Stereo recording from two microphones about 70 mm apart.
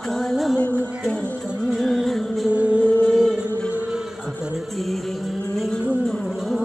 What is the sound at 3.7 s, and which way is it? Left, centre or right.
Music, centre.